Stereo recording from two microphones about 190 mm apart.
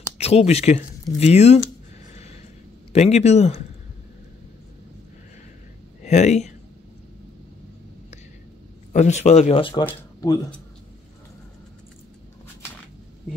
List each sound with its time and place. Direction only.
0.2 s speech: 35° left (ahead or behind)
2.9 s speech: 35° left (ahead or behind)
6.0 s speech: 35° left (ahead or behind)
8.9 s speech: 35° left (ahead or behind); by 10.4 s 20° left (ahead or behind)